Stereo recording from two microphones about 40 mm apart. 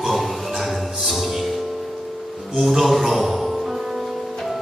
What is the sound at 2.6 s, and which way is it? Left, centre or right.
Music, centre.